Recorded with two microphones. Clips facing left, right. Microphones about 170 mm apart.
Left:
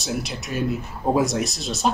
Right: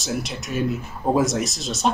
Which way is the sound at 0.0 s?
Centre (ahead or behind).